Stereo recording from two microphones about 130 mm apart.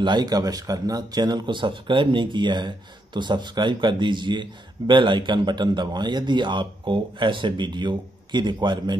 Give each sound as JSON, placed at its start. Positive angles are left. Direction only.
{"t": 0.0, "sound": "speech", "side_deg": -35}